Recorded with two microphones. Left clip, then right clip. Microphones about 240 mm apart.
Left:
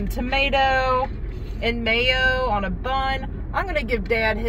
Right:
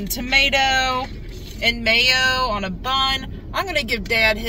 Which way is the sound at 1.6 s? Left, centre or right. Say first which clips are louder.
Right 4 dB; right.